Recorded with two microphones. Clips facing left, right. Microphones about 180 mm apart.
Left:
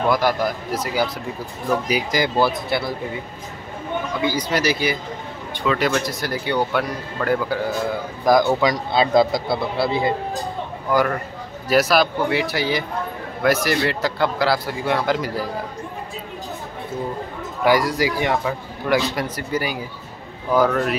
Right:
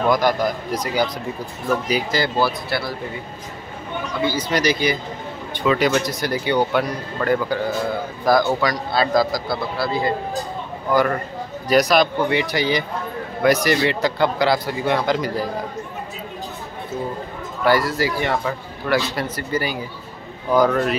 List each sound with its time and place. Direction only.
0.1 s speech: 5° left (ahead or behind)
4.2 s speech: 15° left (ahead or behind)
8.3 s a man's voice: 15° left (ahead or behind)
11.7 s speech: 5° left (ahead or behind)
17.6 s speech: 15° left (ahead or behind)